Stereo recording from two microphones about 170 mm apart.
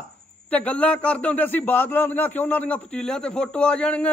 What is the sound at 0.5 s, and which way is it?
A man's voice, 10° left (ahead or behind).